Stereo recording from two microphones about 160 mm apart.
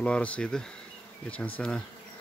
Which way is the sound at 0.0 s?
5° left (ahead or behind).